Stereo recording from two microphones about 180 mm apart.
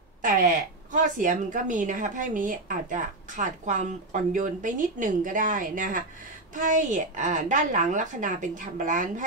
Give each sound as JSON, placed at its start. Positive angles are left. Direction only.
{"t": 0.2, "sound": "a woman's voice", "side_deg": -50}